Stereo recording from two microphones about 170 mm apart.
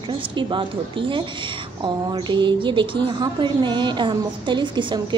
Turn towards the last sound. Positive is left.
turn(degrees=-25)  # may be behind; listen again after turning